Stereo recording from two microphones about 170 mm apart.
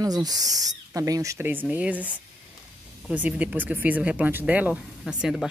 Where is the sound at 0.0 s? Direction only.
20° right (ahead or behind).